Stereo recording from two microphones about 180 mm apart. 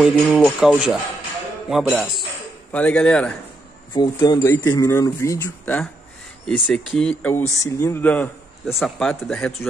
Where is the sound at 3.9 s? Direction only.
25° left (ahead or behind).